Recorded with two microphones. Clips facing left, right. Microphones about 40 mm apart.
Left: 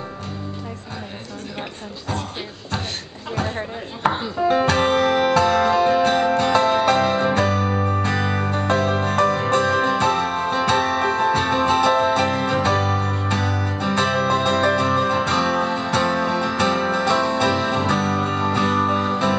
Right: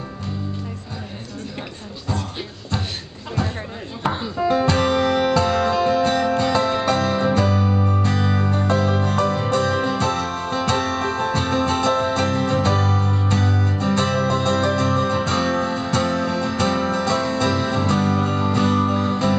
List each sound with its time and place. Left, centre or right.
4.5 s music: left
7.3 s music: left
7.8 s music: left
13.7 s music: left